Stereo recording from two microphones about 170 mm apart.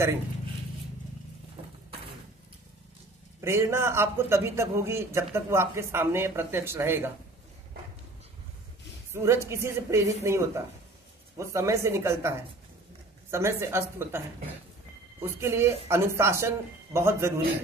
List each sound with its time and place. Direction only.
1.6 s a sound: 35° right (ahead or behind)
3.3 s a man's voice: 15° right (ahead or behind)
9.1 s a man's voice: 15° right (ahead or behind)
15.2 s a man's voice: 15° right (ahead or behind)